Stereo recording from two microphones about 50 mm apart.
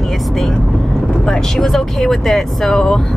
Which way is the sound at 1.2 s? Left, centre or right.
Centre.